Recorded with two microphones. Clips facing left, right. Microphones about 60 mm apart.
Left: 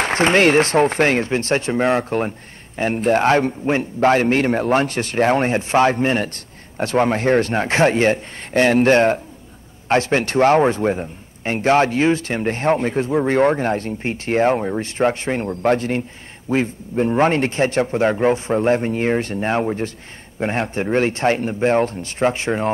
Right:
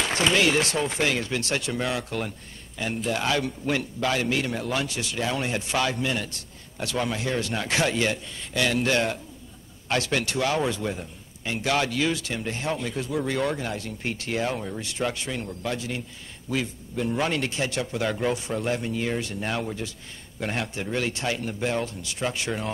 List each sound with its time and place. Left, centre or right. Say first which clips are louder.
0.0 s speech: left 7 dB; left
16.4 s speech: left 9 dB; left